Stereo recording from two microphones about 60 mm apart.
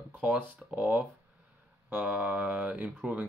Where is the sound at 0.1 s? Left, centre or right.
Right.